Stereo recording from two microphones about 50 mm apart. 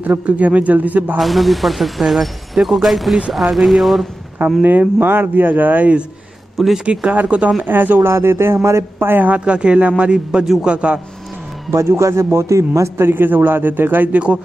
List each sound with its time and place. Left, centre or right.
0.0 s a man's voice: right
1.1 s speech: centre
4.6 s a man's voice: right
6.9 s a man's voice: right
7.6 s a man's voice: right
8.0 s a woman's voice: right
9.4 s a man's voice: right
11.7 s a man's voice: right
12.9 s a man's voice: right